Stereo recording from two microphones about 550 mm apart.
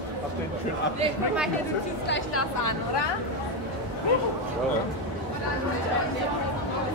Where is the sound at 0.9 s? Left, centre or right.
Centre.